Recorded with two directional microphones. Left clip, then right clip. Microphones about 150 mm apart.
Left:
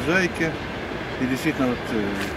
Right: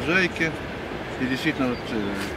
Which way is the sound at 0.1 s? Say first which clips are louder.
Even; 5° left (ahead or behind).